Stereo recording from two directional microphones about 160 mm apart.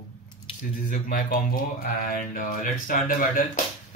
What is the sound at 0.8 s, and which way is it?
Speech, 60° left (ahead or behind).